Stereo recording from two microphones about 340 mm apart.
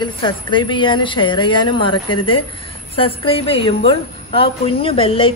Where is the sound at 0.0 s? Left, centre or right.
Centre.